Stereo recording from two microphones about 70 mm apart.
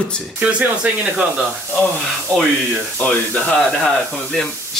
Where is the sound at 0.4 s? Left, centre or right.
Centre.